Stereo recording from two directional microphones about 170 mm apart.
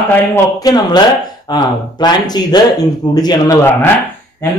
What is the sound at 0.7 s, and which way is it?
Speech, 20° left (ahead or behind).